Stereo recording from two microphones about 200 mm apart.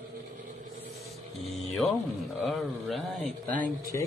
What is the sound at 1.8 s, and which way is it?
A man's voice, centre (ahead or behind).